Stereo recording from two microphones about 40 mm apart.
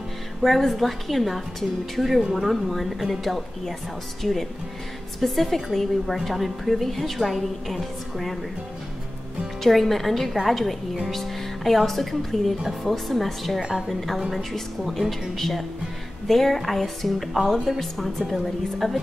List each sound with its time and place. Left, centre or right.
0.4 s a woman's voice: centre
9.6 s a woman's voice: centre
13.6 s a woman's voice: right
13.8 s a woman's voice: centre